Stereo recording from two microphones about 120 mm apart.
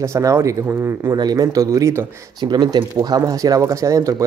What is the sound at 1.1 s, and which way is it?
Speech, 35° right (ahead or behind).